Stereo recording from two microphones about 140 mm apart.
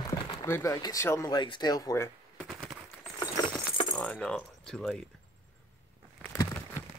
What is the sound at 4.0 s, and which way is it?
Speech, 5° left (ahead or behind).